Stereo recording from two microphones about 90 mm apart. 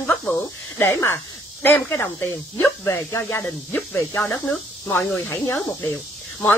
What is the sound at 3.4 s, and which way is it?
Speech, 20° left (ahead or behind).